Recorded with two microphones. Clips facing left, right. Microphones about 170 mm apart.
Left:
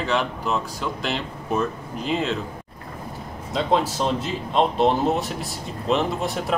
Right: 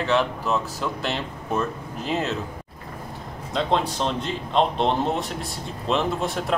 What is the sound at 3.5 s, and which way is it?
Speech, 5° left (ahead or behind).